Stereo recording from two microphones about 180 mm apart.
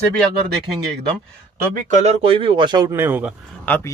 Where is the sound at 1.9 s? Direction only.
40° right (ahead or behind); by 3.3 s 10° right (ahead or behind).